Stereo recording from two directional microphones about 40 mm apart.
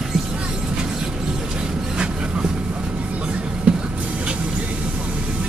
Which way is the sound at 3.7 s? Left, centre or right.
Right.